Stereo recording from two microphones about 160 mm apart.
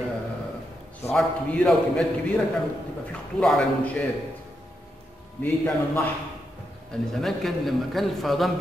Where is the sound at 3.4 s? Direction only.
5° left (ahead or behind).